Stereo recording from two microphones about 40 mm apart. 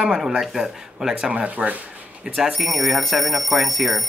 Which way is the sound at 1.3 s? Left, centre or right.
Right.